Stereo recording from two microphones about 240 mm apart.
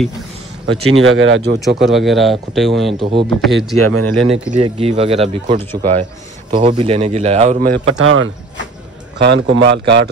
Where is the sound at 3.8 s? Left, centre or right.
Right.